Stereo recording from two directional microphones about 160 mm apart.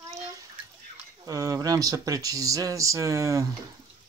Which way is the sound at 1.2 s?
20° right (ahead or behind).